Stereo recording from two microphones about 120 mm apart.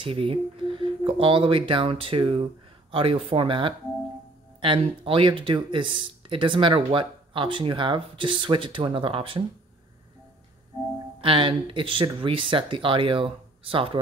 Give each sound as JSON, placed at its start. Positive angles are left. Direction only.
{"t": 0.0, "sound": "speech", "side_deg": -50}
{"t": 11.1, "sound": "speech", "side_deg": -45}